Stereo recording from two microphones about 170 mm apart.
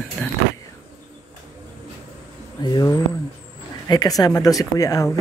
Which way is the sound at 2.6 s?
25° left (ahead or behind).